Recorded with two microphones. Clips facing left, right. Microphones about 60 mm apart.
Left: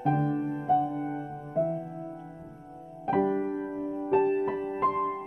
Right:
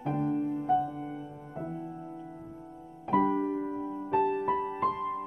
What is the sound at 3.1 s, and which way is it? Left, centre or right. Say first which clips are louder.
Music: even; left.